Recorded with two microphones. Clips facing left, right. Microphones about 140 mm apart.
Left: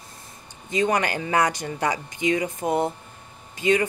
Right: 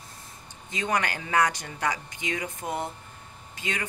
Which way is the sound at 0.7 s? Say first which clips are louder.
Left 6 dB; 10° left (ahead or behind).